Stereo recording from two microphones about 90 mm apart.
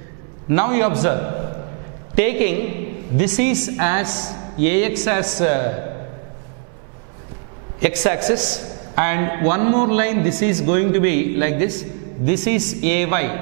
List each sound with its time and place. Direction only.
0.5 s a man's voice: 10° right (ahead or behind)
7.8 s a man's voice: 10° right (ahead or behind)